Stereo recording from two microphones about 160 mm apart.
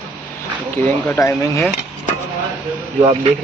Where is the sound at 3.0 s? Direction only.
30° right (ahead or behind).